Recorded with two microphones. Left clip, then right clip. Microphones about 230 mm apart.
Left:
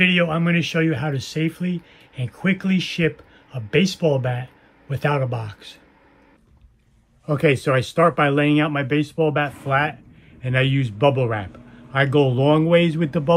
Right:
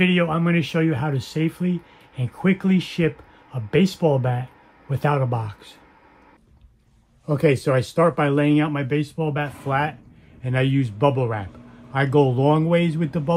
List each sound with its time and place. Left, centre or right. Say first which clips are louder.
0.0 s speech: left 2 dB; centre
7.2 s speech: left 1 dB; centre